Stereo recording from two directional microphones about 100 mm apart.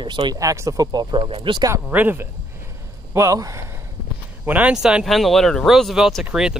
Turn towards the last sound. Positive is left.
turn(degrees=-5)  # may be behind; listen again after turning